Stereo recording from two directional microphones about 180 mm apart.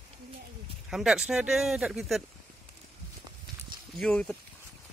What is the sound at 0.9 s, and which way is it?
Speech, 5° right (ahead or behind).